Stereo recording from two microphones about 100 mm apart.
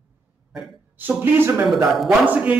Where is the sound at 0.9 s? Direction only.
20° right (ahead or behind).